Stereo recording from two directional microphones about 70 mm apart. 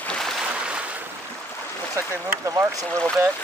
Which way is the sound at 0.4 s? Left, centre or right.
Centre.